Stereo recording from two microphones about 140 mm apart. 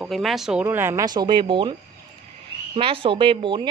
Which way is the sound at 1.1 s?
30° right (ahead or behind).